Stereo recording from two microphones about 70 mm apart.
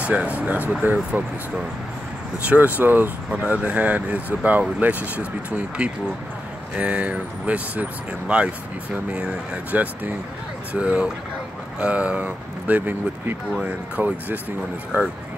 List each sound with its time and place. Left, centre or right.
0.0 s speech: centre
2.4 s speech: right